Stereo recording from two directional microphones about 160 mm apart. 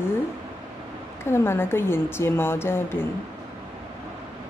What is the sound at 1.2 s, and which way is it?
Speech, 15° left (ahead or behind).